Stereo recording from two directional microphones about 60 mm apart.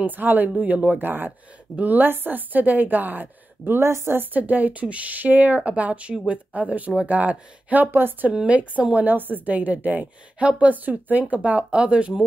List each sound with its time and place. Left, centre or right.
0.0 s a woman's voice: right
8.3 s a woman's voice: right